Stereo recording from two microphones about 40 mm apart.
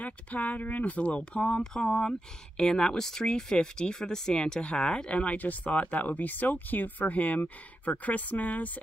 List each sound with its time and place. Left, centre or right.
0.0 s speech: left
1.4 s speech: centre; by 8.6 s left